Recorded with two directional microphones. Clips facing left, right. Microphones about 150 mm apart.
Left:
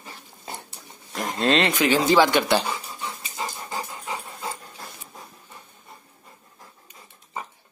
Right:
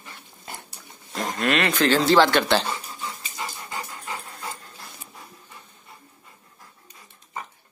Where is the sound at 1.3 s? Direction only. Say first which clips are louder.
Left 2 dB; 25° left (ahead or behind).